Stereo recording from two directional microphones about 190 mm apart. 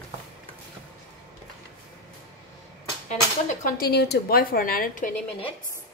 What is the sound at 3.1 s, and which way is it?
Speech, 40° left (ahead or behind).